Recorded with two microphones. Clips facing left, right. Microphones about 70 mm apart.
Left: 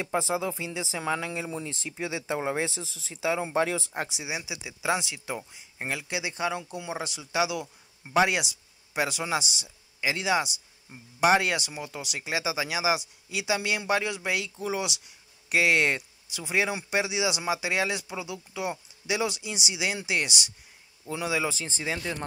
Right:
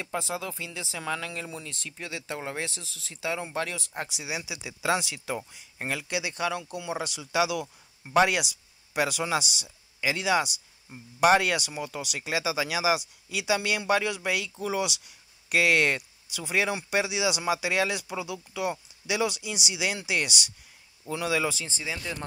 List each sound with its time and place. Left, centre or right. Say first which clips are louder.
0.0 s speech: left 4 dB; centre
8.0 s speech: right 1 dB; centre
21.5 s speech: left 3 dB; left